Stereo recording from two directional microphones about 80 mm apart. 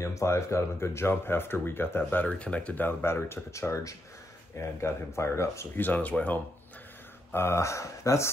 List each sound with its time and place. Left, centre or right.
0.0 s speech: left
2.2 s speech: centre; by 5.7 s left
5.8 s speech: left
7.3 s speech: left